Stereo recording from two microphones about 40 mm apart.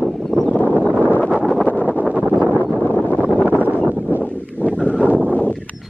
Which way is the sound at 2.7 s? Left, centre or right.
Centre.